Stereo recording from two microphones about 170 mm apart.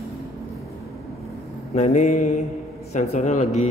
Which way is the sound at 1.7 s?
40° left (ahead or behind).